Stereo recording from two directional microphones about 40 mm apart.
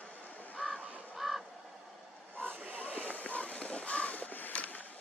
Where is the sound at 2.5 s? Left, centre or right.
Right.